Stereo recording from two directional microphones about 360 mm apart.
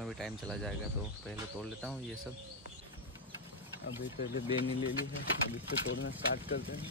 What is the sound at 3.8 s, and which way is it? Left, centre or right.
Speech, left.